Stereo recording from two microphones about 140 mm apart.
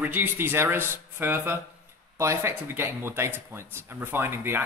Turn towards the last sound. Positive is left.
turn(degrees=-15)  # may be behind; listen again after turning